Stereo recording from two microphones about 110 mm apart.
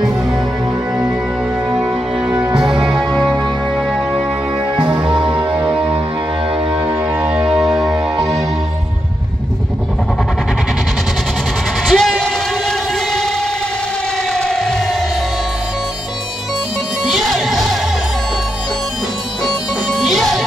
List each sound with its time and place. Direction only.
1.7 s music: 5° right (ahead or behind)
4.7 s music: 10° right (ahead or behind)
5.0 s music: 50° right (ahead or behind)
5.7 s music: 10° right (ahead or behind)
7.2 s music: 5° right (ahead or behind)
11.9 s a sound: 5° left (ahead or behind)
14.3 s a sound: 5° left (ahead or behind)
17.0 s music: centre (ahead or behind)
19.4 s music: centre (ahead or behind)